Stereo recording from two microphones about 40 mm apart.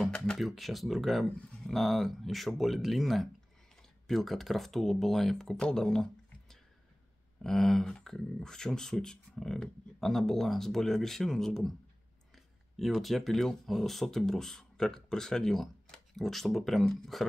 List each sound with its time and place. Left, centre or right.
0.4 s speech: centre
7.4 s speech: centre
12.7 s speech: centre